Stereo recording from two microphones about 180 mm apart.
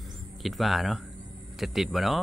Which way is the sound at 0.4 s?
Centre (ahead or behind).